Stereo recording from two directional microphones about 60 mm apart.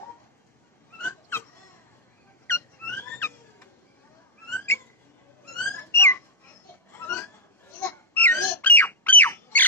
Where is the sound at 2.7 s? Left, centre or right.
Left.